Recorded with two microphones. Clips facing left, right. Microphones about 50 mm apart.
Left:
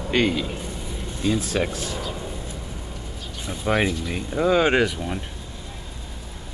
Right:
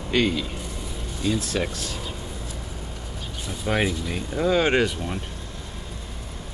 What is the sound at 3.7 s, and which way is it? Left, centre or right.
Speech, centre.